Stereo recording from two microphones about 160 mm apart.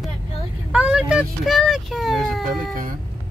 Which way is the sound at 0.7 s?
5° right (ahead or behind).